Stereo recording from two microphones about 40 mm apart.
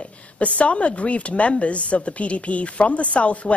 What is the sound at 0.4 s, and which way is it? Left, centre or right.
A woman's voice, left.